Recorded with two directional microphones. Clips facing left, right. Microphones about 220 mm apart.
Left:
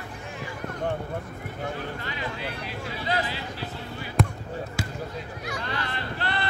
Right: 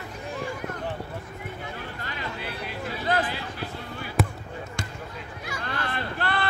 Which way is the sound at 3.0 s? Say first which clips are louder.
Right 3 dB; 50° right (ahead or behind).